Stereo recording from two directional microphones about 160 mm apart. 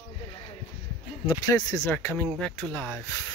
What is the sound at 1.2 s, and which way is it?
Speech, 25° left (ahead or behind).